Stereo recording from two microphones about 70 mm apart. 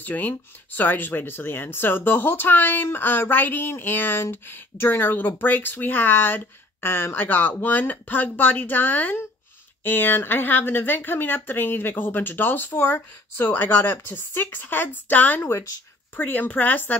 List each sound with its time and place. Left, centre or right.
0.0 s speech: left
15.4 s speech: left
16.2 s speech: left